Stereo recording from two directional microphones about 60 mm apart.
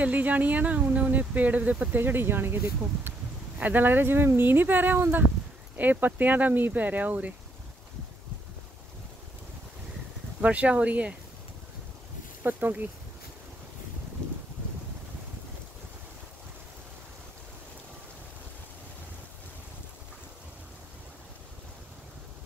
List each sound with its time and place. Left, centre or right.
0.0 s speech: right
10.4 s speech: right
12.4 s speech: right